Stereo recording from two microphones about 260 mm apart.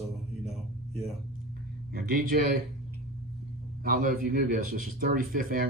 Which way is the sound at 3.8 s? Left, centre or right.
Right.